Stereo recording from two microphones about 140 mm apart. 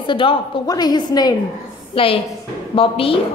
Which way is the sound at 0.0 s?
35° left (ahead or behind).